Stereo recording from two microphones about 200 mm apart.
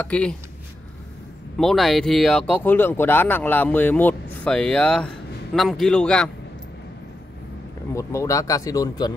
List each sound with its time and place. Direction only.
0.0 s speech: 5° left (ahead or behind)
1.6 s speech: centre (ahead or behind)
7.9 s speech: 15° left (ahead or behind)